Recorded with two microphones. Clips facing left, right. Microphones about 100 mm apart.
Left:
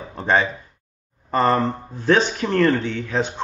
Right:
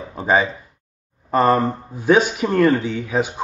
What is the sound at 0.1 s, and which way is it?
Speech, 5° right (ahead or behind).